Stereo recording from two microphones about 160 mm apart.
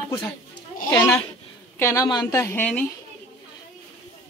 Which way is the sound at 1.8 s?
20° left (ahead or behind).